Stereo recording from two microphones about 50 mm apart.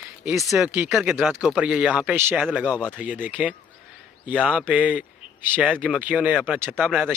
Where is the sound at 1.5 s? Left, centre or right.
Right.